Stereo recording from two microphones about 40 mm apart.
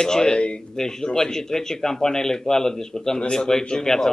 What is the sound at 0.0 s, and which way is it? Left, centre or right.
Speech, centre.